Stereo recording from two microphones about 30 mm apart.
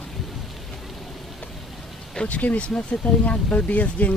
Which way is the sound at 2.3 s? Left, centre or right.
Left.